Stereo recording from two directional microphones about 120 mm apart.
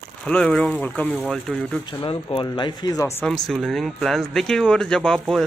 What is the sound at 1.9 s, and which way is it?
Speech, 40° left (ahead or behind).